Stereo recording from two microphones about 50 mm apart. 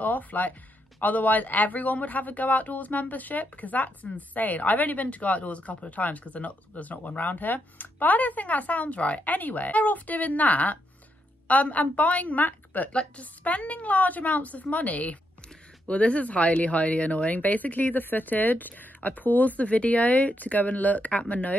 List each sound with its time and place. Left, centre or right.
0.0 s a man's voice: left